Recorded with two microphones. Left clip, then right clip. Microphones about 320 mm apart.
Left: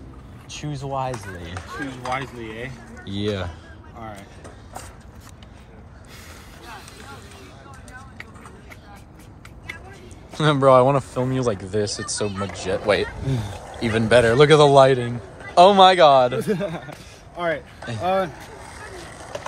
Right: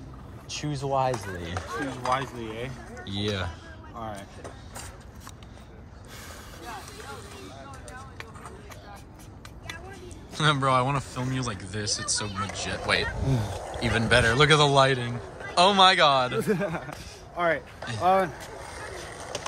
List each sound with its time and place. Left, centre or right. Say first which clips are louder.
0.5 s speech: right 1 dB; centre
3.1 s a man's voice: left 4 dB; centre
4.0 s a sound: even; right
10.3 s a man's voice: left 8 dB; centre
16.5 s a man's voice: left 2 dB; centre
17.8 s speech: right 1 dB; centre
18.1 s vehicle: left 1 dB; right